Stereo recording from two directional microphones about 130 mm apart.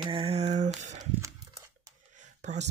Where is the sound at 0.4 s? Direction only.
55° right (ahead or behind).